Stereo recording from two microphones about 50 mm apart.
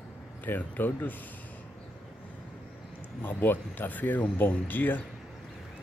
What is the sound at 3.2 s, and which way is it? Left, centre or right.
Speech, left.